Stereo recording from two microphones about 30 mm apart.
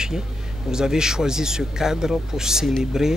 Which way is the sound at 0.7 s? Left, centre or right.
Right.